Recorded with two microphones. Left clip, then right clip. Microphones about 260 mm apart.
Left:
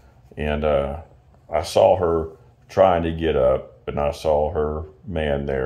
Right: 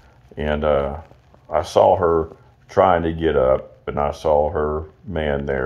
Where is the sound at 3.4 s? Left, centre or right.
Right.